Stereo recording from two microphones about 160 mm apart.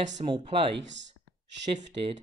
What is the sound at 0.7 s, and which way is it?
Speech, 90° right.